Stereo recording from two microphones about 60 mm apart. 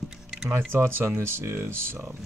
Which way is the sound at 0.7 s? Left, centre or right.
Right.